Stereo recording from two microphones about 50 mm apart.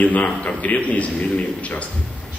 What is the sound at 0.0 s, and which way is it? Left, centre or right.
A man's voice, left.